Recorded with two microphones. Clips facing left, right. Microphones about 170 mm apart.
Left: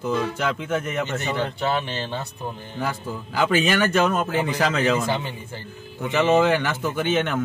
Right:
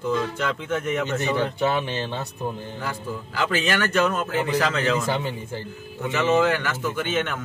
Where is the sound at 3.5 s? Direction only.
15° left (ahead or behind).